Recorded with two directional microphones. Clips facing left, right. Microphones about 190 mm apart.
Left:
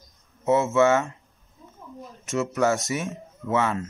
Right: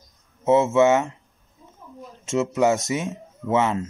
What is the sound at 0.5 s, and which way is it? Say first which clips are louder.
Speech: right 3 dB; 20° right (ahead or behind).